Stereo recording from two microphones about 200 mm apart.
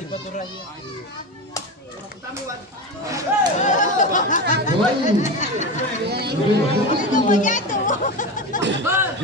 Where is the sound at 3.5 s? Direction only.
40° left (ahead or behind).